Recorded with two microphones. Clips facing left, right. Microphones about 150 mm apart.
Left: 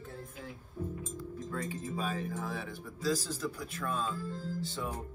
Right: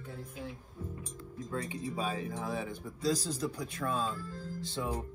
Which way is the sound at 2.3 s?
20° right (ahead or behind).